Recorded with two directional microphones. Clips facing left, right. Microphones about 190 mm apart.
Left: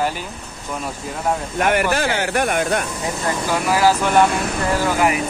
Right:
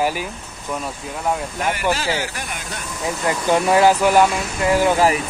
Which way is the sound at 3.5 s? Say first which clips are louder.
Right 3 dB; 25° right (ahead or behind).